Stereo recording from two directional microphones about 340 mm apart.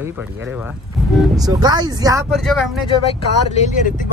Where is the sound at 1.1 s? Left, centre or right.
Centre.